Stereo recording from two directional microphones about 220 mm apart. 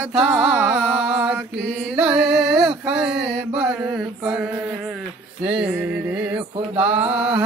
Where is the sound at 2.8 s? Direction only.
5° right (ahead or behind).